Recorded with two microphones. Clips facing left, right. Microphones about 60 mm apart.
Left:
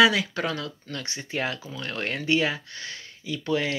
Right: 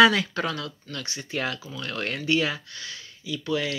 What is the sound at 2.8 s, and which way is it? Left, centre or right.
Speech, left.